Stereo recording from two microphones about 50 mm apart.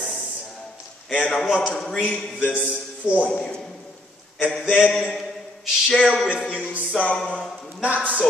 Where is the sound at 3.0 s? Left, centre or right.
Centre.